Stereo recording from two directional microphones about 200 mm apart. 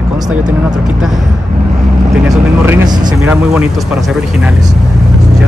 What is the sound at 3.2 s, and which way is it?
Speech, 10° right (ahead or behind).